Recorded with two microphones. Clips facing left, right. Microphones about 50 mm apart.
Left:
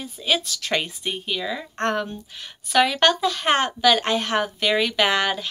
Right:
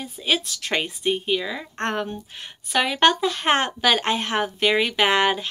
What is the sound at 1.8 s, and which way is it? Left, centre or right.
Speech, right.